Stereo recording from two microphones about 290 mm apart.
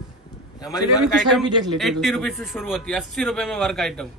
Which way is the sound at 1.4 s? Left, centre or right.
Centre.